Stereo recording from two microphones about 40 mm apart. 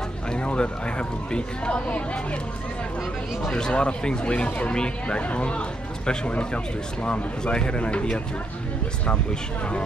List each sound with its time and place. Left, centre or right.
0.3 s a man's voice: left
3.5 s a man's voice: left